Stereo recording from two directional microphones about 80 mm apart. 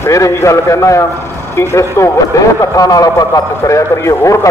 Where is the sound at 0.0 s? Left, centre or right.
Left.